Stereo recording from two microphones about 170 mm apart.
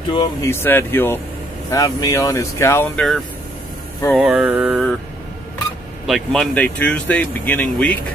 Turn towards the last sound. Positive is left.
turn(degrees=10)  # may be behind; listen again after turning